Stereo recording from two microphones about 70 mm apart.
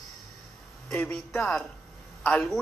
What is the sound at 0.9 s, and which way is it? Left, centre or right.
Speech, left.